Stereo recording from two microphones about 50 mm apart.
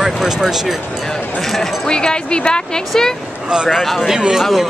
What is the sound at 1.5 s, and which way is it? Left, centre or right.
Speech, centre.